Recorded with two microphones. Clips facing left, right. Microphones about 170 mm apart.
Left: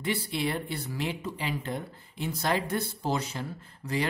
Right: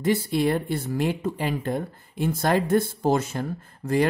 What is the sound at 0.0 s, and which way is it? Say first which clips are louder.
Speech: right 8 dB; 45° right (ahead or behind).